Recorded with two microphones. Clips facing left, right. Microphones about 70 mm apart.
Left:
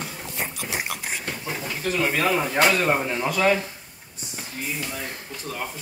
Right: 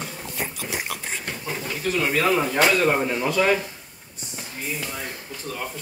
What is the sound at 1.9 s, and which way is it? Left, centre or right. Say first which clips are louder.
Speech: right 1 dB; left.